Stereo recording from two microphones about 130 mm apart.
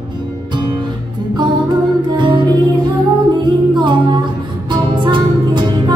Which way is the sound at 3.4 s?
35° right (ahead or behind).